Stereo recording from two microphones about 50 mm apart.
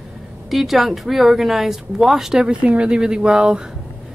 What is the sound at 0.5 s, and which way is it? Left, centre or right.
A woman's voice, centre.